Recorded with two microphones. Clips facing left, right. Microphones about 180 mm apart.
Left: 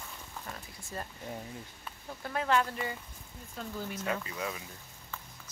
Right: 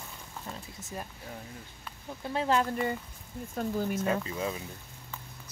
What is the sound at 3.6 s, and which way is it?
Speech, 50° right (ahead or behind).